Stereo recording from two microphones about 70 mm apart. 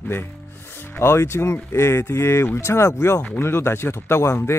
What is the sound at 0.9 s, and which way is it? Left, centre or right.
Speech, left.